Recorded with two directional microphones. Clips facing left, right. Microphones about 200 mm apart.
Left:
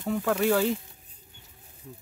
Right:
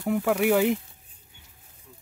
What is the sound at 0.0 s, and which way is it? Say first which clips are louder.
Speech: right 2 dB; 15° right (ahead or behind).